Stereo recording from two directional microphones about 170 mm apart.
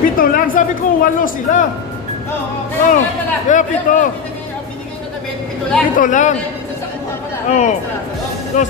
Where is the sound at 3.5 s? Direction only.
50° left (ahead or behind).